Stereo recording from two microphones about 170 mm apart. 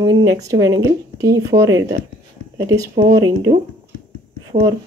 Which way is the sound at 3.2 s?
20° right (ahead or behind).